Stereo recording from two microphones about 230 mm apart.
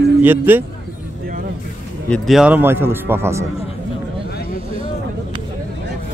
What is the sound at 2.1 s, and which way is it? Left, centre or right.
A man's voice, centre.